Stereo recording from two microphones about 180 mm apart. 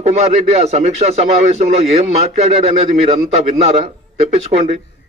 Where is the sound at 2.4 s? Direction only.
35° right (ahead or behind).